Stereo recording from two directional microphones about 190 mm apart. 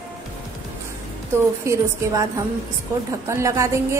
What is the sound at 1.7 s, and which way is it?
Speech, 15° right (ahead or behind).